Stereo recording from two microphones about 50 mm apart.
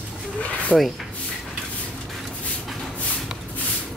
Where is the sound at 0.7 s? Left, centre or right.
Centre.